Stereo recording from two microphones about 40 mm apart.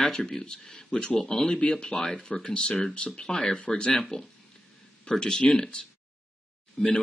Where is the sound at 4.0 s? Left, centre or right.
Centre.